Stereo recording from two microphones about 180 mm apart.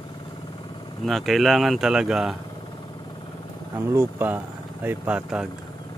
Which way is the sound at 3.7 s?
10° right (ahead or behind).